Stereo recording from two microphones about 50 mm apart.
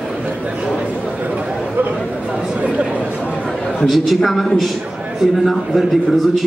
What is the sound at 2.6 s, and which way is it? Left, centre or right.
Chatter, right.